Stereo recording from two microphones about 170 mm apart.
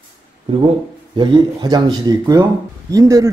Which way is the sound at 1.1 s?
25° right (ahead or behind).